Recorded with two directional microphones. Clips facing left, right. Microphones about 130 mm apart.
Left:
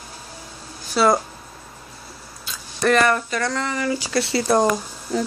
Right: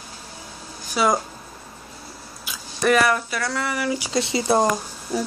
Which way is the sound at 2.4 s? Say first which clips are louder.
Even; 5° right (ahead or behind).